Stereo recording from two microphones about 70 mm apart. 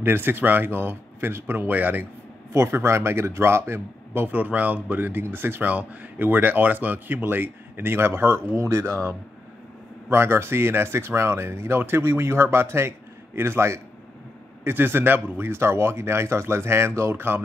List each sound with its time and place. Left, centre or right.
0.0 s speech: right
2.5 s speech: right